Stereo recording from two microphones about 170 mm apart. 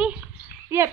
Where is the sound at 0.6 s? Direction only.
15° right (ahead or behind).